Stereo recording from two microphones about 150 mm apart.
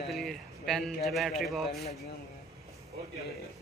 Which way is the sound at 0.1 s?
Centre (ahead or behind).